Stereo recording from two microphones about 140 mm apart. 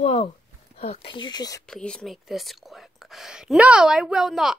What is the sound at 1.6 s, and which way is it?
Speech, 5° left (ahead or behind).